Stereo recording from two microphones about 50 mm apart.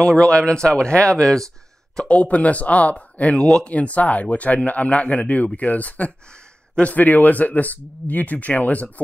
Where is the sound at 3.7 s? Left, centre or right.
Left.